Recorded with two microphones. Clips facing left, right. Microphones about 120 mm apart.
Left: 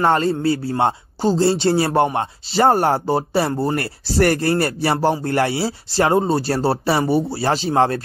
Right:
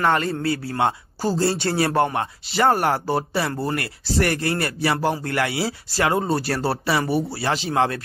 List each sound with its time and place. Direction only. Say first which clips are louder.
0.0 s a man's voice: left 4 dB; 30° left (ahead or behind)